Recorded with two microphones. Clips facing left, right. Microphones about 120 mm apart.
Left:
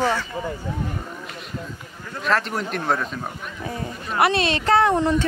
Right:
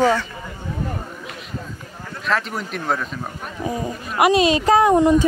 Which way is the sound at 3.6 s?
15° right (ahead or behind).